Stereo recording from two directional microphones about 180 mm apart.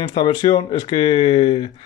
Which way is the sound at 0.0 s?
25° left (ahead or behind).